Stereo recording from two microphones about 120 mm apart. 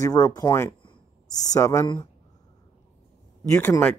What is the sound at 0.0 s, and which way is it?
Speech, 30° left (ahead or behind).